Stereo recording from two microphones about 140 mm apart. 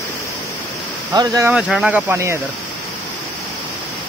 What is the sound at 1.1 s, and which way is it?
Speech, 25° right (ahead or behind).